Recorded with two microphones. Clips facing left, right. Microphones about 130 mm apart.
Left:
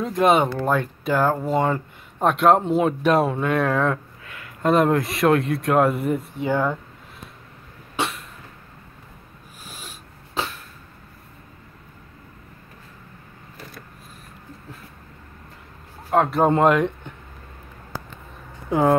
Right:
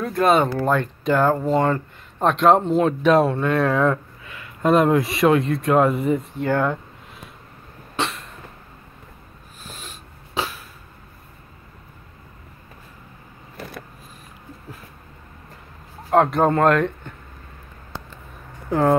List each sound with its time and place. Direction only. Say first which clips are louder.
0.0 s speech: even; 15° left (ahead or behind)
0.5 s speech: right 2 dB; centre (ahead or behind)
7.9 s cough: even; 5° left (ahead or behind)
9.6 s a sound: right 2 dB; 10° left (ahead or behind)
16.1 s speech: right 2 dB; centre (ahead or behind)
16.4 s speech: even; 15° left (ahead or behind)
18.7 s speech: even; 10° left (ahead or behind)